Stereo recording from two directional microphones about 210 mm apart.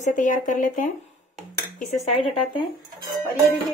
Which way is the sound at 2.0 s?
25° left (ahead or behind).